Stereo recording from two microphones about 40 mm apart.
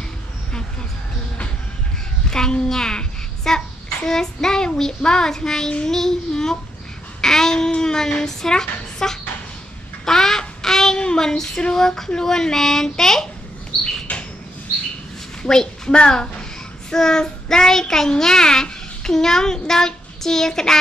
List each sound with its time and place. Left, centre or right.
2.2 s a child's voice: centre
5.9 s child singing: centre
7.2 s speech: centre
10.0 s duck: centre
10.4 s child singing: centre
15.4 s a woman's voice: centre
16.9 s child singing: centre